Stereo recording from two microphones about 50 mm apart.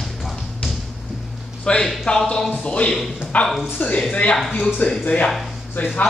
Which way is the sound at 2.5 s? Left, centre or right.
Left.